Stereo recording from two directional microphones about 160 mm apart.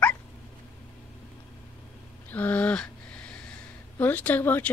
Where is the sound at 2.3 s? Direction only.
10° left (ahead or behind).